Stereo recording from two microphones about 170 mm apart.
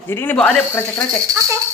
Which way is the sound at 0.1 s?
10° left (ahead or behind).